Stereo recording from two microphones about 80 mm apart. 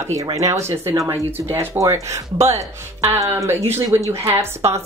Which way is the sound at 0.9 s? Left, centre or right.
Right.